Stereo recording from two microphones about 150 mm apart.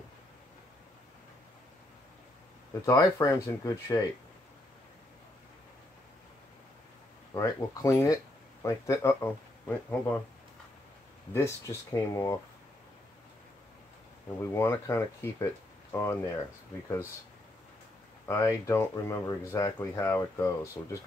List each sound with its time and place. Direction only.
2.8 s speech: 20° left (ahead or behind)
7.3 s speech: 20° left (ahead or behind)
11.3 s speech: 20° left (ahead or behind)
14.4 s speech: 15° left (ahead or behind)
18.2 s speech: 20° left (ahead or behind)